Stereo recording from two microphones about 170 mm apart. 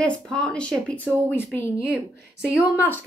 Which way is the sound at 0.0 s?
5° left (ahead or behind).